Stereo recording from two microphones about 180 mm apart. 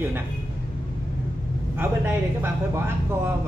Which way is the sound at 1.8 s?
10° right (ahead or behind).